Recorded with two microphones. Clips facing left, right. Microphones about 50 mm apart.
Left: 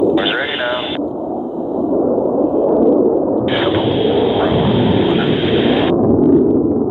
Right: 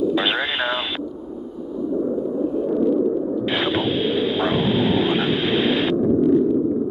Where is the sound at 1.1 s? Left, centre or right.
Left.